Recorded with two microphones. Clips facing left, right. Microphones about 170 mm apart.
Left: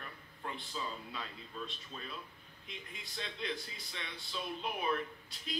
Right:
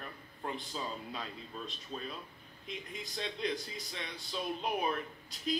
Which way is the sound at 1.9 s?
40° right (ahead or behind).